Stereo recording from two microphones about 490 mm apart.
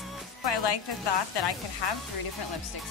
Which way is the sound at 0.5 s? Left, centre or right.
Left.